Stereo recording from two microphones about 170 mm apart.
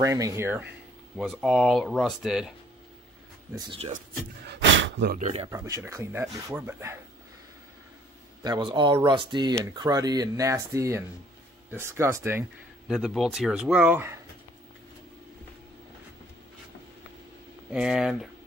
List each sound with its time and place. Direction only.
0.0 s speech: 20° right (ahead or behind)
1.1 s speech: 5° right (ahead or behind)
3.5 s speech: 30° right (ahead or behind)
4.5 s gasp: 90° right
5.2 s speech: 35° right (ahead or behind)
5.5 s speech: 15° right (ahead or behind)
8.5 s speech: 25° right (ahead or behind)
12.8 s speech: centre (ahead or behind)
17.6 s speech: 5° right (ahead or behind)